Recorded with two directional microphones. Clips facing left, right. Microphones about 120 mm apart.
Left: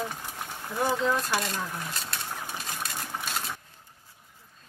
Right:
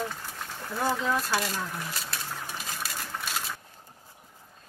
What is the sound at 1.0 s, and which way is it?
Speech, centre (ahead or behind).